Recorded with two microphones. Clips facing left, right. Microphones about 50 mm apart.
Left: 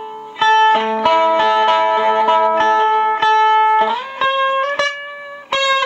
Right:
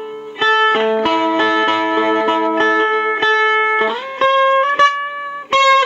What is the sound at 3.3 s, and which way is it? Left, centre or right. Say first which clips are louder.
Music: left 2 dB; right.